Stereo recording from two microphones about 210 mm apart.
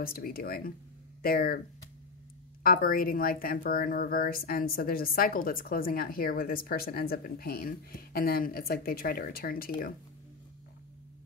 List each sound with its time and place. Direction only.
0.0 s speech: 45° left (ahead or behind)
2.6 s speech: 45° left (ahead or behind)